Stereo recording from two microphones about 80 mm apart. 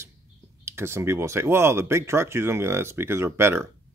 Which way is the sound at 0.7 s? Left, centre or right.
Right.